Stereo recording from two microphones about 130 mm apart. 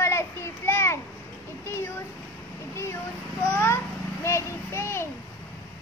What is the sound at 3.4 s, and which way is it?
A child's voice, 15° left (ahead or behind).